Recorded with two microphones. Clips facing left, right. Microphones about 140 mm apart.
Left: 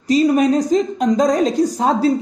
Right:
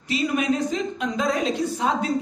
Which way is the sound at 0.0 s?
40° left (ahead or behind).